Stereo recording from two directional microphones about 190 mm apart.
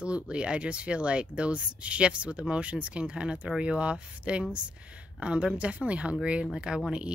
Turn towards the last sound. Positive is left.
turn(degrees=-5)  # may be behind; listen again after turning